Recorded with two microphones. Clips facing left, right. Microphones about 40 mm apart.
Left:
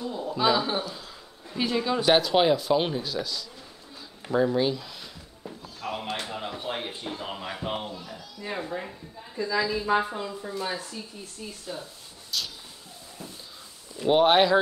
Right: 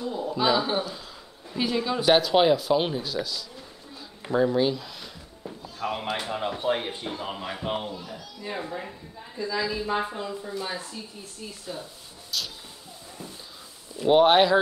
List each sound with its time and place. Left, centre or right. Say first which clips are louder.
0.0 s a sound: even; centre
1.5 s speech: even; centre
5.8 s speech: right 3 dB; centre
10.5 s speech: left 1 dB; centre
13.9 s speech: right 2 dB; centre